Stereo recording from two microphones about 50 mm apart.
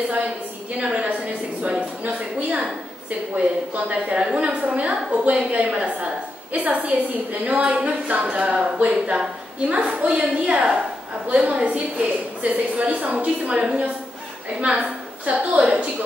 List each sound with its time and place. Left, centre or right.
0.7 s a sound: right
3.3 s a woman's voice: right
8.5 s speech: centre
9.9 s a woman's voice: right